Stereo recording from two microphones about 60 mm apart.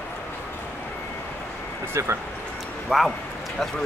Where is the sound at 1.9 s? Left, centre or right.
Right.